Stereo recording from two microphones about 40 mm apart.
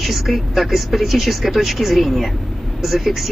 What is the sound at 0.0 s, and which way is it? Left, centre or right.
Speech, centre.